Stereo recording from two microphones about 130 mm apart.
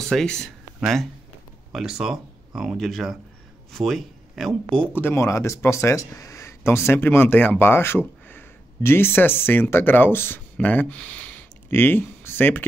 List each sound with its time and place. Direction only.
0.1 s speech: 5° left (ahead or behind)